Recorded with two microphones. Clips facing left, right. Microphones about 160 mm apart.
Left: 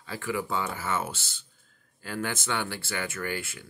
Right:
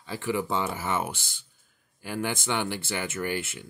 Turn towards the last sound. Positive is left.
turn(degrees=-20)  # may be behind; listen again after turning